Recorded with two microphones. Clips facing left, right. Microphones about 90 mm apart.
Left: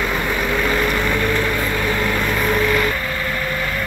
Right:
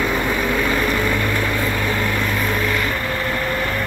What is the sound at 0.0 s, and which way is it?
Vehicle, centre (ahead or behind).